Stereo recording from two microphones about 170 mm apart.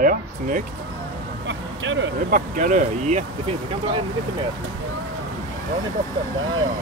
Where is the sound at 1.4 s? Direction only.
90° right.